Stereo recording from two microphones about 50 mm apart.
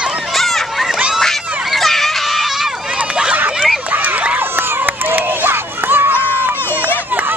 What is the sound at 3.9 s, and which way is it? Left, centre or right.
Run, right.